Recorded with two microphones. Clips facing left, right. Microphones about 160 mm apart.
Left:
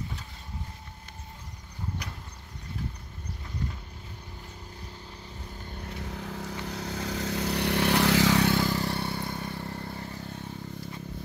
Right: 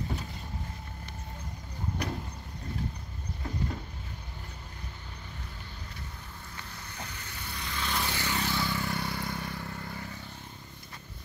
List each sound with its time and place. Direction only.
5.9 s vehicle: 90° left
8.5 s vehicle: 40° left (ahead or behind)